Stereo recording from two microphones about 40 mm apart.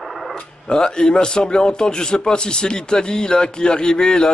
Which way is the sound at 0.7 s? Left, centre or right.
Left.